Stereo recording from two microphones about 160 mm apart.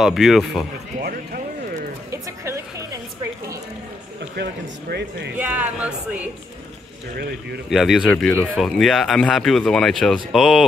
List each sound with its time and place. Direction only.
0.0 s speech: centre (ahead or behind)
2.0 s a sound: 20° right (ahead or behind)
4.4 s speech: 90° right
5.3 s speech: 10° right (ahead or behind)
7.2 s speech: 80° right
7.7 s speech: centre (ahead or behind)
8.1 s speech: 10° left (ahead or behind)